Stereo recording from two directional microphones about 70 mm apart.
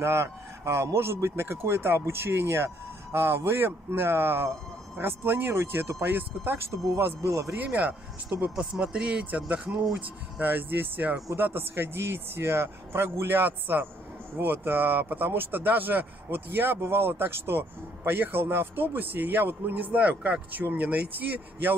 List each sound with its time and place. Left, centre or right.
0.0 s speech: right
7.2 s speech: right
8.5 s speech: centre